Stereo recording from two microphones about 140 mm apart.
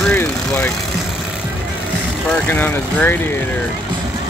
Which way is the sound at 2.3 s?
10° left (ahead or behind).